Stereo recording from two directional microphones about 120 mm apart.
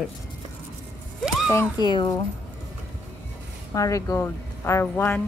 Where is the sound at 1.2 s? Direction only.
5° right (ahead or behind).